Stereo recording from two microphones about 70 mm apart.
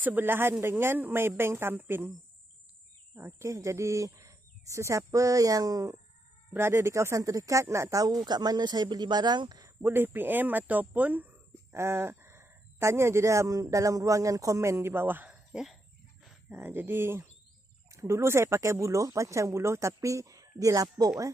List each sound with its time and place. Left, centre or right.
0.0 s speech: right
3.2 s speech: right
6.5 s speech: right
8.1 s a woman's voice: right
9.8 s speech: right
11.7 s speech: right
15.3 s a sound: centre
16.4 s speech: right